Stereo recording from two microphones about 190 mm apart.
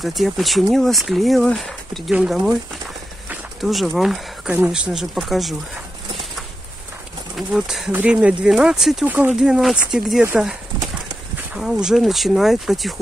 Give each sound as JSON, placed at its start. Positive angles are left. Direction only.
{"t": 0.0, "sound": "speech", "side_deg": 0}
{"t": 7.3, "sound": "speech", "side_deg": 0}
{"t": 11.5, "sound": "speech", "side_deg": -5}